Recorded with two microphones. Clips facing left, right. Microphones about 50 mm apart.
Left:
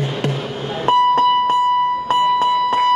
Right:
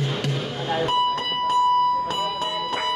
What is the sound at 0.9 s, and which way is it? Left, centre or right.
Music, left.